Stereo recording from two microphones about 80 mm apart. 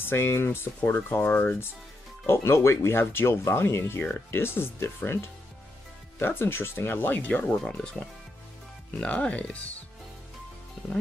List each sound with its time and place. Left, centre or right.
0.0 s speech: left